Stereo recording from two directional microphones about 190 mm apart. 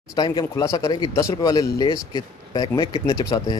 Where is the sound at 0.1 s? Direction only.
20° left (ahead or behind).